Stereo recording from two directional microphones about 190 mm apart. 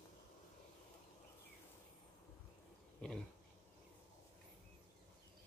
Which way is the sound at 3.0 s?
5° left (ahead or behind).